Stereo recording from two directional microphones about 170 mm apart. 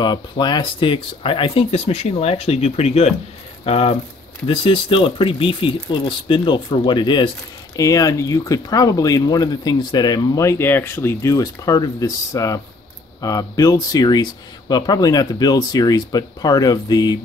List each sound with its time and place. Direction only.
0.0 s speech: 25° left (ahead or behind)